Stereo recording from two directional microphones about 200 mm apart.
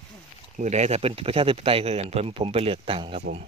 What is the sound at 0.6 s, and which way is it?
Speech, 35° right (ahead or behind).